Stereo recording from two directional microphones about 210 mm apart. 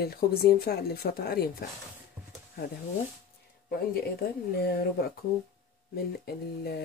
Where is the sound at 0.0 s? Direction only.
50° left (ahead or behind).